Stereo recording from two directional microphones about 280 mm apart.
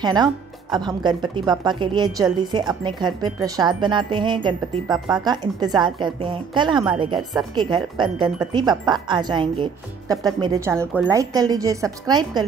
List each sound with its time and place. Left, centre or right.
0.0 s speech: centre
4.8 s speech: centre
5.1 s speech: centre